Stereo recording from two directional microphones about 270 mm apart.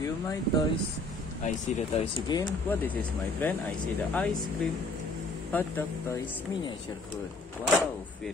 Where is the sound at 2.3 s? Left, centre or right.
Centre.